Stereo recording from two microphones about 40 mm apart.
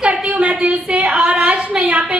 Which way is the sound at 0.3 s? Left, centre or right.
Right.